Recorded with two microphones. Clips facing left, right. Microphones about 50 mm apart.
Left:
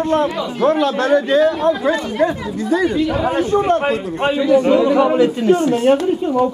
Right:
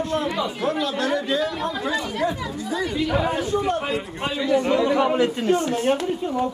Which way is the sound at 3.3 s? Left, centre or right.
Left.